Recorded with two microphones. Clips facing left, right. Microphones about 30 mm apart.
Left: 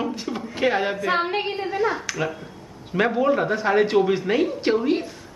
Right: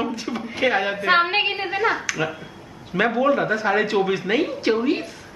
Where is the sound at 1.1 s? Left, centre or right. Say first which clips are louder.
Right 8 dB; right.